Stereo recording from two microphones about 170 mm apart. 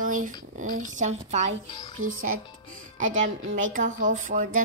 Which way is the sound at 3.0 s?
50° right (ahead or behind).